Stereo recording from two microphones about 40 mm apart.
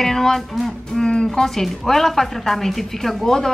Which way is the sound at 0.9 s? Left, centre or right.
Centre.